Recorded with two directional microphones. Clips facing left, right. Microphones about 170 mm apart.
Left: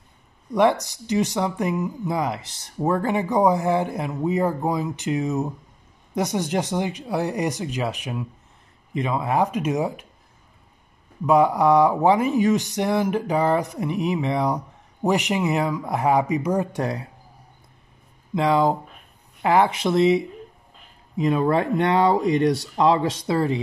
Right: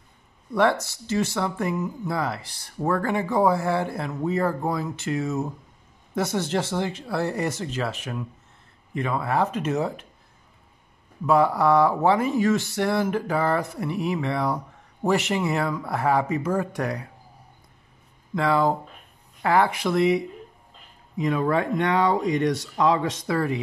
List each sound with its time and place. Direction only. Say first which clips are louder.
0.5 s speech: left 3 dB; 15° left (ahead or behind)
11.2 s speech: left 2 dB; 15° left (ahead or behind)
18.3 s speech: left 2 dB; 20° left (ahead or behind)